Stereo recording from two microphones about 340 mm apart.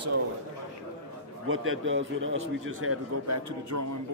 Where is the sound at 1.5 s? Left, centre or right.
Right.